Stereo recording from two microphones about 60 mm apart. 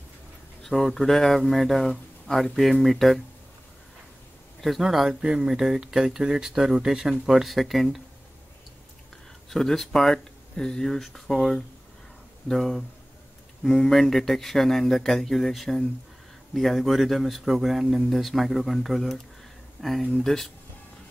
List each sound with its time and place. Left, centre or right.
0.7 s speech: centre
4.6 s speech: centre
5.2 s speech: centre
9.5 s speech: centre